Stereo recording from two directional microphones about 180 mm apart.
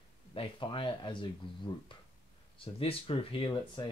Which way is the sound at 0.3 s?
30° left (ahead or behind).